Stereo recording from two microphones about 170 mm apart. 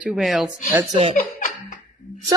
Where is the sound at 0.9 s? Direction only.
30° right (ahead or behind).